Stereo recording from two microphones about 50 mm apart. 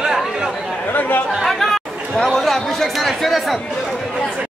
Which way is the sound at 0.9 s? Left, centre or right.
Left.